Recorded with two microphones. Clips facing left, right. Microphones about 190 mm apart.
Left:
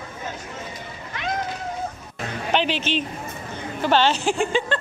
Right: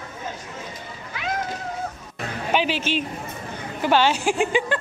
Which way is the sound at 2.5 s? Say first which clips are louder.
Even; 10° right (ahead or behind).